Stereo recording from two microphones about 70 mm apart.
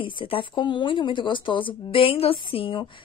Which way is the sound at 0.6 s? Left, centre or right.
Left.